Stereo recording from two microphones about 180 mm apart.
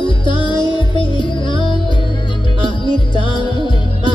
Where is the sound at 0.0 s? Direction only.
25° left (ahead or behind).